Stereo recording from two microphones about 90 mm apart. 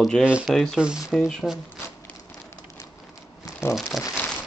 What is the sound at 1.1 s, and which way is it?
Speech, 5° left (ahead or behind).